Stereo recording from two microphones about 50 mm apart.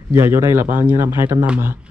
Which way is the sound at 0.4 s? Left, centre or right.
Right.